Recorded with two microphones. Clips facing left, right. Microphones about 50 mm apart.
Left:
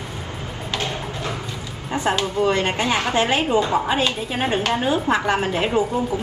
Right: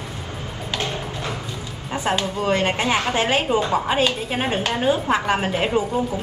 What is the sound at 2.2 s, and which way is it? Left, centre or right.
Speech, centre.